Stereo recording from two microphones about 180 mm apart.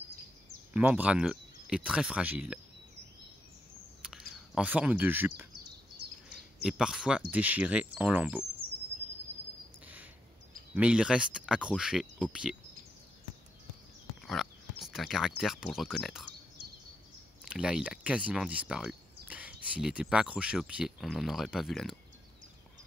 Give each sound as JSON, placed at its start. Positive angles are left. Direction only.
{"t": 0.7, "sound": "speech", "side_deg": -10}
{"t": 4.0, "sound": "speech", "side_deg": -5}
{"t": 10.7, "sound": "speech", "side_deg": -5}
{"t": 14.2, "sound": "speech", "side_deg": 0}
{"t": 17.5, "sound": "speech", "side_deg": -5}